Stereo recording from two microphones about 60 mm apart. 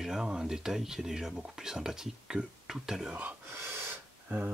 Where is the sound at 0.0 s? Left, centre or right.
Centre.